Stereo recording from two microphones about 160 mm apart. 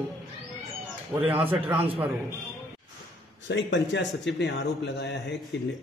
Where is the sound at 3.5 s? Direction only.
90° left.